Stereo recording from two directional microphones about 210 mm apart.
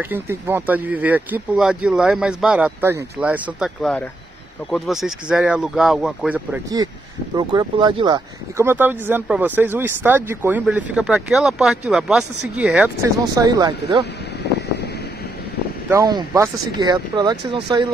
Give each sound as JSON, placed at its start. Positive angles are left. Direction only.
{"t": 0.0, "sound": "speech", "side_deg": -10}
{"t": 7.3, "sound": "speech", "side_deg": -20}
{"t": 15.9, "sound": "speech", "side_deg": -15}